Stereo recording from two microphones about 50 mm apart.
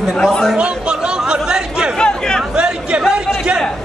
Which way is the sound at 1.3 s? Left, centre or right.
Centre.